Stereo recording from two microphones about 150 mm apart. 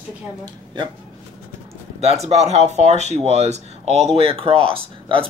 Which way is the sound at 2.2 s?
45° right (ahead or behind).